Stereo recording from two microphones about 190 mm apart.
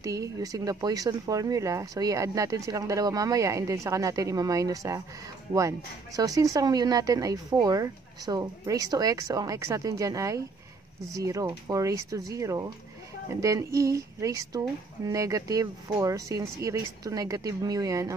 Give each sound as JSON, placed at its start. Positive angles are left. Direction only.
{"t": 0.0, "sound": "speech", "side_deg": -15}